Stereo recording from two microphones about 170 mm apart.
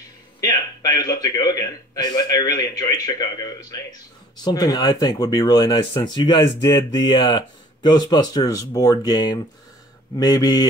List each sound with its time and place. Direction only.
0.4 s a man's voice: 20° left (ahead or behind)